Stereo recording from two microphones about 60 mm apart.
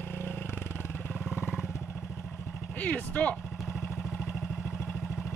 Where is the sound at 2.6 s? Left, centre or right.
Left.